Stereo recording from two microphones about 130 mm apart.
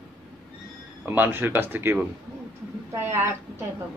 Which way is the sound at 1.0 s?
15° right (ahead or behind).